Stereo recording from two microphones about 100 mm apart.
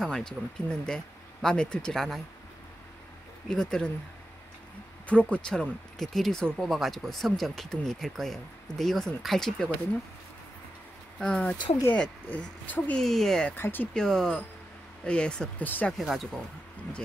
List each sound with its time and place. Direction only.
0.0 s speech: 5° left (ahead or behind)
3.4 s speech: 5° left (ahead or behind)
5.0 s speech: 15° left (ahead or behind)
11.1 s speech: 10° left (ahead or behind)
13.0 s speech: 5° left (ahead or behind)
13.5 s speech: 20° left (ahead or behind)
13.9 s speech: 5° left (ahead or behind)
16.0 s speech: centre (ahead or behind)